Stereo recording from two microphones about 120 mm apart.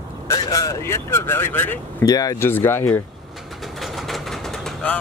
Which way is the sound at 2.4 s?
20° left (ahead or behind).